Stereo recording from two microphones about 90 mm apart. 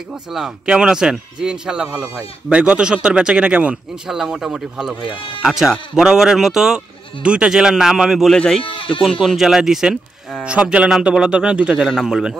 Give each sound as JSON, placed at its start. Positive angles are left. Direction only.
{"t": 0.3, "sound": "speech", "side_deg": -10}
{"t": 8.4, "sound": "speech", "side_deg": 10}
{"t": 8.6, "sound": "speech", "side_deg": 70}
{"t": 9.2, "sound": "speech", "side_deg": -5}